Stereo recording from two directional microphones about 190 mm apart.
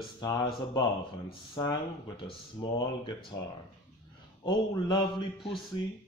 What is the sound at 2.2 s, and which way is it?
Speech, 25° left (ahead or behind).